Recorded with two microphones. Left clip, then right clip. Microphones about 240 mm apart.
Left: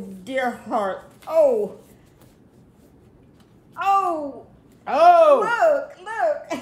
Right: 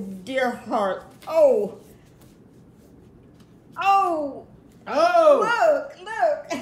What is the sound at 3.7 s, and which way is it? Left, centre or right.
Babbling, centre.